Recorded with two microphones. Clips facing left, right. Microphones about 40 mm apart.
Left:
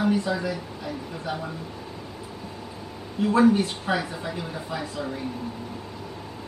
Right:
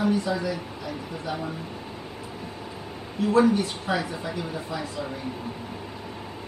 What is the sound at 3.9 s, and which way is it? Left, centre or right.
Speech, left.